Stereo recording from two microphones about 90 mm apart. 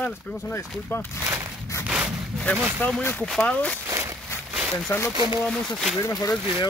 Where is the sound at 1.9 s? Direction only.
10° right (ahead or behind).